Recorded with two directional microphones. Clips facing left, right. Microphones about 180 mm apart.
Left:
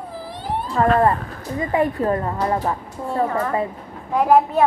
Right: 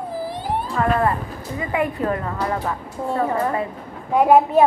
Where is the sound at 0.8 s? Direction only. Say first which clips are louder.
Left 4 dB; 35° left (ahead or behind).